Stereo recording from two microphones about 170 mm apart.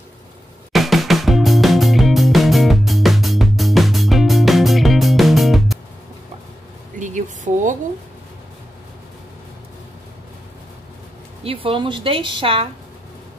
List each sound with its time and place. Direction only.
0.7 s music: centre (ahead or behind)
7.0 s a sound: 50° right (ahead or behind)
11.4 s a woman's voice: 30° right (ahead or behind)